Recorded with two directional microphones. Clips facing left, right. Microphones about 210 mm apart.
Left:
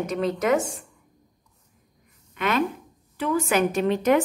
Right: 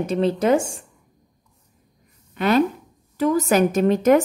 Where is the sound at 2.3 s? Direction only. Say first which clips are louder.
Right 6 dB; 35° right (ahead or behind).